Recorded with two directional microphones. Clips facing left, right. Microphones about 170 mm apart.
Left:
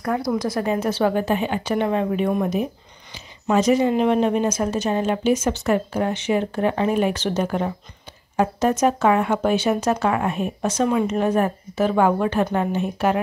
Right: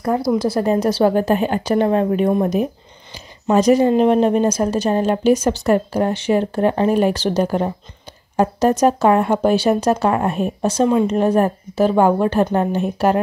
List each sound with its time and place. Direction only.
0.0 s a woman's voice: 30° right (ahead or behind)